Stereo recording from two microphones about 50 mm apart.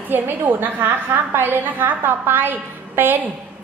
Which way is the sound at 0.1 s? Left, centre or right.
Right.